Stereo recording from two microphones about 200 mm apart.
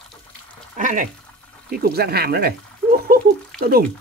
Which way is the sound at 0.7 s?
40° right (ahead or behind).